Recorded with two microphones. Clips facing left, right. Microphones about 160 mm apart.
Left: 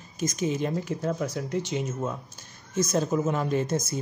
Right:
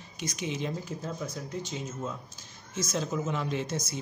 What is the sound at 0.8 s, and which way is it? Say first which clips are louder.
Speech: left 7 dB; 70° left (ahead or behind).